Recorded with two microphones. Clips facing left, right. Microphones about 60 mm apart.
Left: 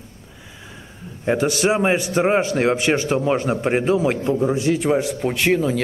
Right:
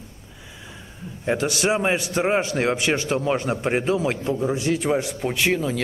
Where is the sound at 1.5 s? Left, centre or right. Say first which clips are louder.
Left 3 dB; centre.